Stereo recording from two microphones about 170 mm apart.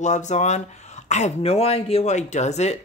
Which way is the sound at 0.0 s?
45° left (ahead or behind).